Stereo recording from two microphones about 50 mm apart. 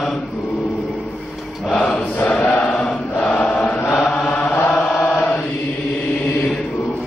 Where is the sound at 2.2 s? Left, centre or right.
Left.